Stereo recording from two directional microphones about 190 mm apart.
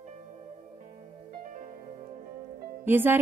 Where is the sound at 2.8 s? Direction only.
10° right (ahead or behind).